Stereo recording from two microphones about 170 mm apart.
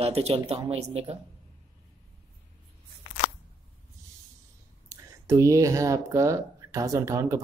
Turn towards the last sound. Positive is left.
turn(degrees=-20)  # may be behind; listen again after turning